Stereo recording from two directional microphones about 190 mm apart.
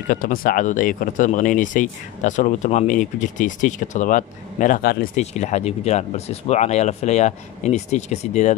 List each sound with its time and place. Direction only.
0.1 s speech: 45° left (ahead or behind)